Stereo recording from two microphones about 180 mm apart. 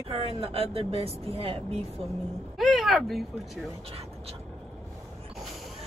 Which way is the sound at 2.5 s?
Centre (ahead or behind).